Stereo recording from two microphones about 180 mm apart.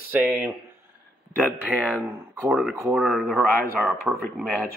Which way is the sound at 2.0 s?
10° right (ahead or behind).